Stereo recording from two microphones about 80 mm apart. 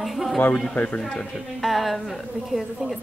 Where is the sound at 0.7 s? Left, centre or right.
Centre.